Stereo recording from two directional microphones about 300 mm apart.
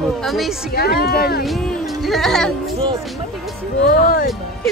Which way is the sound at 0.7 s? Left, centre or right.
Left.